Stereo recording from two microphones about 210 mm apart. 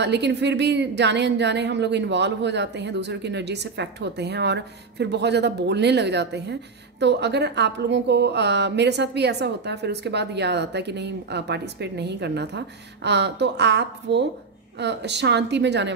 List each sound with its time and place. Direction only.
0.0 s a woman's voice: 55° right (ahead or behind)